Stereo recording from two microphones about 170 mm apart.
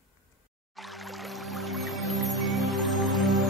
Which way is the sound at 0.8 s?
Centre (ahead or behind).